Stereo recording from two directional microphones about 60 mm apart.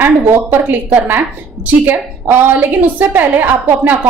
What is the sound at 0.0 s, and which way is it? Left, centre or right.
A woman's voice, right.